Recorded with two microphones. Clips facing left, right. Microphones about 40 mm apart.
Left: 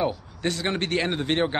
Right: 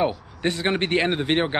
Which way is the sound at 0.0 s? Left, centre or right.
Right.